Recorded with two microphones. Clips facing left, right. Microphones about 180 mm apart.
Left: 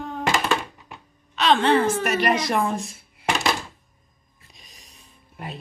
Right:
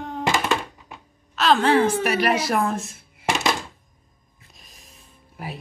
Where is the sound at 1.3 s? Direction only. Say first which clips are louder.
Right 1 dB; centre (ahead or behind).